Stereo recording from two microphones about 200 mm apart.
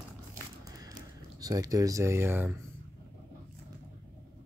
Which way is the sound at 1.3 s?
15° right (ahead or behind).